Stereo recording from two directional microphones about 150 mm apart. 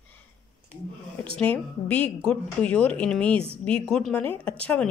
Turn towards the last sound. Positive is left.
turn(degrees=10)  # may be behind; listen again after turning